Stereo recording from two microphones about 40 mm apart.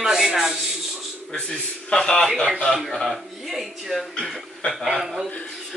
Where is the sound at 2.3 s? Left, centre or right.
Centre.